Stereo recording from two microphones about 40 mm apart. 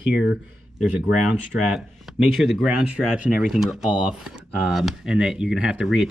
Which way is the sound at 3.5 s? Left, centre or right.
Centre.